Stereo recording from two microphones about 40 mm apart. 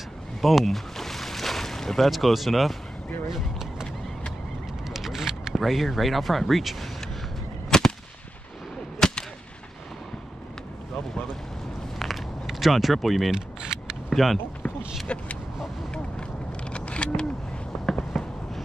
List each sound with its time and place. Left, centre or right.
0.4 s boat: centre
2.0 s speech: centre
4.8 s single-lens reflex camera: centre
5.5 s speech: centre
7.7 s a sound: centre
9.0 s whip: centre
12.0 s a sound: centre
13.3 s single-lens reflex camera: centre
14.1 s speech: centre
15.1 s speech: left
15.9 s a sound: left
17.8 s fireworks: centre